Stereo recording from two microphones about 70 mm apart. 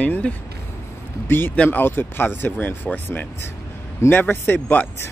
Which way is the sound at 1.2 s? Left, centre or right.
Left.